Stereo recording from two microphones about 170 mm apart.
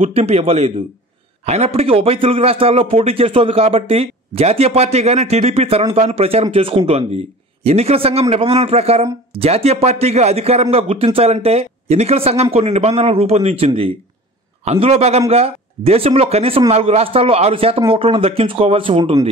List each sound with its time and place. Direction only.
0.0 s a man's voice: 35° right (ahead or behind)